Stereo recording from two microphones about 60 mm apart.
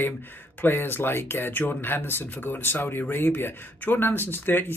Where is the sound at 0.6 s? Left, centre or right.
Left.